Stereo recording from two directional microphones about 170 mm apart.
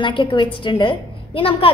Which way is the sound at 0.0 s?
30° left (ahead or behind).